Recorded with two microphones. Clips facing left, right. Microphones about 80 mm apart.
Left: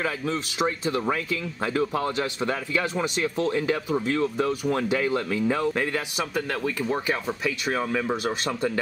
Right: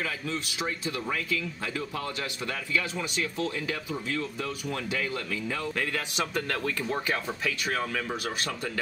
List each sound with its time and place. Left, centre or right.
0.0 s speech: left
5.9 s speech: centre; by 8.7 s left